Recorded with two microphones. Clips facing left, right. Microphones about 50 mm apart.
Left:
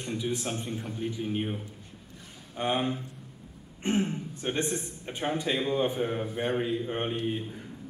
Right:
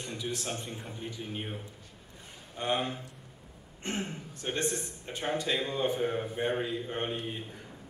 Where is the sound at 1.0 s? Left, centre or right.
Centre.